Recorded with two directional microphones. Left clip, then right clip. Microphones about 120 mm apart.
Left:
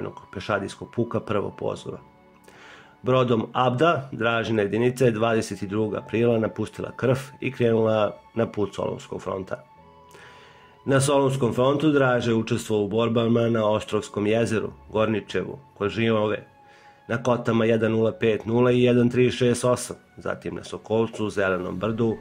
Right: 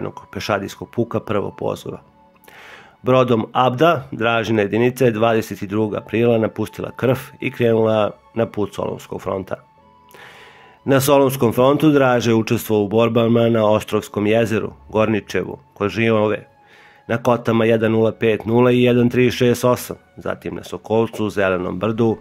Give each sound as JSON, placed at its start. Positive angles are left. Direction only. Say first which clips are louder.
{"t": 0.0, "sound": "speech", "louder": "right 6 dB", "side_deg": -30}
{"t": 10.9, "sound": "a man's voice", "louder": "right 7 dB", "side_deg": -30}